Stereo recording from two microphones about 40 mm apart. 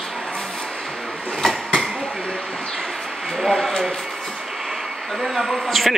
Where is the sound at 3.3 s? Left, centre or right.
Centre.